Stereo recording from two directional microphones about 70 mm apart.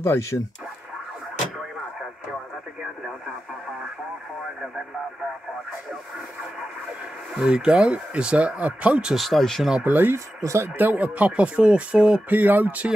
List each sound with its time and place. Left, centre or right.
0.3 s speech: left
7.3 s speech: centre
9.1 s speech: centre
9.8 s speech: right
10.1 s speech: right
10.8 s speech: right